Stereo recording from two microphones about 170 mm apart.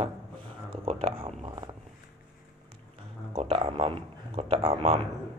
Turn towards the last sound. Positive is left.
turn(degrees=-35)  # may be behind; listen again after turning